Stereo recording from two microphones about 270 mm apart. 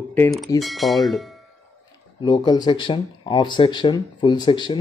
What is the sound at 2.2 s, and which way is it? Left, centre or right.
Speech, centre.